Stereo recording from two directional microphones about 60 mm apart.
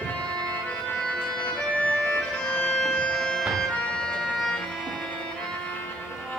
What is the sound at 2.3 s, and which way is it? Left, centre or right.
Music, centre.